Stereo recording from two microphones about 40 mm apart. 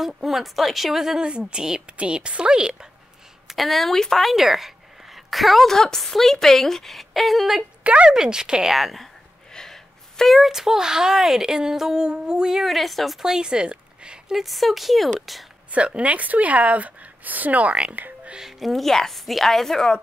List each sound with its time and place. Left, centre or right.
0.0 s a woman's voice: centre
3.4 s a woman's voice: centre
5.7 s a woman's voice: centre
7.8 s speech: right
8.1 s speech: centre
8.6 s a woman's voice: centre
9.5 s speech: centre
12.6 s a woman's voice: centre
13.2 s speech: centre
14.3 s a woman's voice: centre
15.7 s a woman's voice: right
18.7 s speech: centre